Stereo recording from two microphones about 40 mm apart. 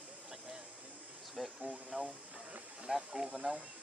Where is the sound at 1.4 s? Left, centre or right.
Centre.